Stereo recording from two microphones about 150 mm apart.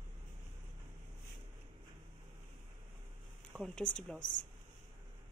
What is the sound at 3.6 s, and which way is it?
Speech, 5° left (ahead or behind).